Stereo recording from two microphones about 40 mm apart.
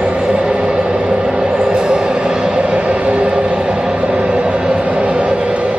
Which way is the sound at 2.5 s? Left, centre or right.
Right.